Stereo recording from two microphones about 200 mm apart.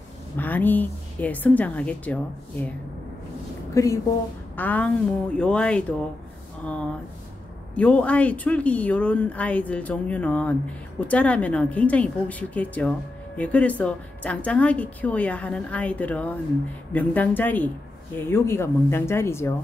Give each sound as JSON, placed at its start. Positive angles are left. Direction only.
{"t": 0.4, "sound": "a woman's voice", "side_deg": 10}
{"t": 3.7, "sound": "a woman's voice", "side_deg": 15}